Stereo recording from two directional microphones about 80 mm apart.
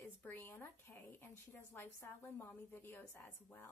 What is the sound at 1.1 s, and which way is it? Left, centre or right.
A woman's voice, left.